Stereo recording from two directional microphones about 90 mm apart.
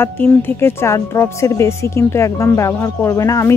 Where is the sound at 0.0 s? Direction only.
25° left (ahead or behind).